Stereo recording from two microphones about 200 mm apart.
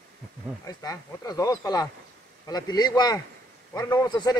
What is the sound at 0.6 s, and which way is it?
Speech, 20° left (ahead or behind).